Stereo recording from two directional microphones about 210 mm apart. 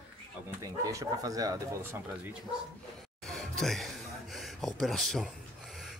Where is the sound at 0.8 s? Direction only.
15° right (ahead or behind).